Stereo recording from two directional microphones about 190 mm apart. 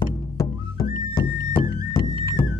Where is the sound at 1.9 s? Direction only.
20° left (ahead or behind).